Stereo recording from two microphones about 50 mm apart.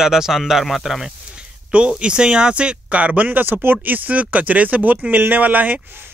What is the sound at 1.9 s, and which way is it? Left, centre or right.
Speech, centre.